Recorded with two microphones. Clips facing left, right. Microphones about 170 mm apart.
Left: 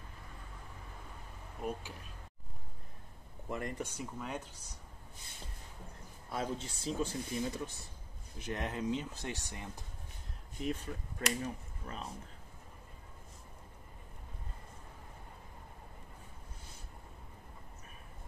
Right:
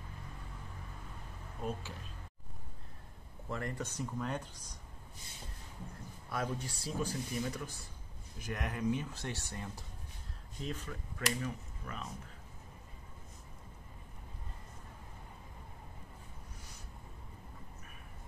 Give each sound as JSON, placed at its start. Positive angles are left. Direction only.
{"t": 1.6, "sound": "speech", "side_deg": 10}
{"t": 3.4, "sound": "speech", "side_deg": 20}
{"t": 6.3, "sound": "speech", "side_deg": 25}
{"t": 10.7, "sound": "speech", "side_deg": 30}